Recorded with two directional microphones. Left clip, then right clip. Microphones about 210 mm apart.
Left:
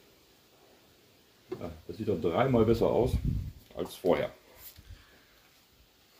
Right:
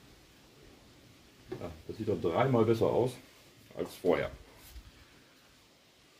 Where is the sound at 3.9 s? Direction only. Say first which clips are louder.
Left 2 dB; 35° left (ahead or behind).